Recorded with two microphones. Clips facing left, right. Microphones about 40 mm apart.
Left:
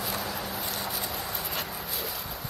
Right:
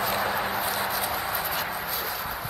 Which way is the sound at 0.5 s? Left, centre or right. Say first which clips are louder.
Right 7 dB; centre.